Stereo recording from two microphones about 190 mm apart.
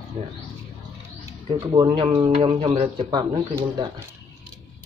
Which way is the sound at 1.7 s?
25° right (ahead or behind).